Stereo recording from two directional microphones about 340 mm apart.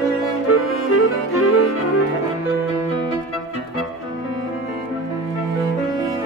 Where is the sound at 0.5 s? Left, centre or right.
Left.